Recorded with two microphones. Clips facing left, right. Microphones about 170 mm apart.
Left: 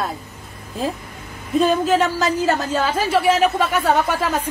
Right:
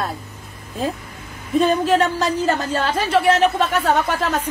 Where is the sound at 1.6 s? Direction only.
Centre (ahead or behind).